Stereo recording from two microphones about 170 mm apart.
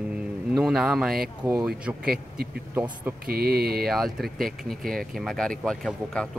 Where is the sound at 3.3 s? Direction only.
65° right (ahead or behind).